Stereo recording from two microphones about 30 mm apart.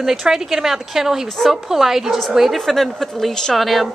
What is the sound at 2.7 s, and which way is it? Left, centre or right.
Speech, centre.